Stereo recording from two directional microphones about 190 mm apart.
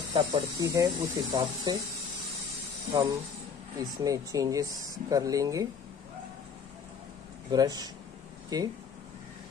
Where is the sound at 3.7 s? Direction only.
20° right (ahead or behind).